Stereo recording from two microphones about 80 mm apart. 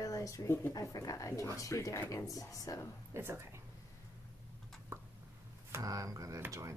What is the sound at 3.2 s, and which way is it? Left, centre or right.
Speech, right.